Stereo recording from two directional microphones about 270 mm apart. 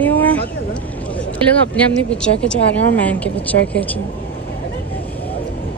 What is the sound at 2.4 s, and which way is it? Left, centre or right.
A woman's voice, centre.